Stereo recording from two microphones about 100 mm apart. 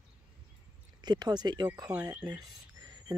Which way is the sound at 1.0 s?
45° right (ahead or behind).